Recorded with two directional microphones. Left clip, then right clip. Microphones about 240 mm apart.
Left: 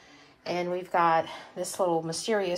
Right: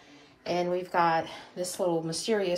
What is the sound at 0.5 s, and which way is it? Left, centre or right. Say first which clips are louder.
Speech: even; left.